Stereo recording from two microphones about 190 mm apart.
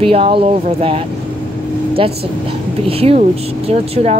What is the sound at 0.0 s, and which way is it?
Speech, 30° right (ahead or behind).